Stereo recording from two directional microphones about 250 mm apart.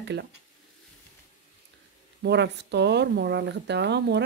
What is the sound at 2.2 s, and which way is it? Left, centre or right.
Speech, right.